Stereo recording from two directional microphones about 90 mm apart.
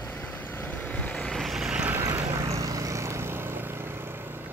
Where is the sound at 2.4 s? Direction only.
40° right (ahead or behind); by 4.5 s 25° right (ahead or behind).